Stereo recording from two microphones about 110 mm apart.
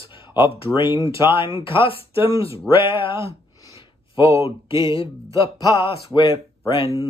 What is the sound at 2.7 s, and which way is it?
Speech, 50° left (ahead or behind).